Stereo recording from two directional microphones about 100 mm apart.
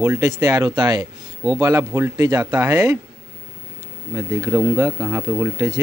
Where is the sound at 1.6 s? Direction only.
35° right (ahead or behind).